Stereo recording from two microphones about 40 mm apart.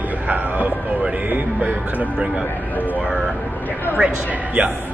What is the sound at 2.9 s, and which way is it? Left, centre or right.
Speech, right.